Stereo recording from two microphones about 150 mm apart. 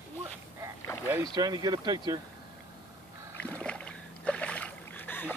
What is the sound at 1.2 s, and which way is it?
Speech, 25° right (ahead or behind).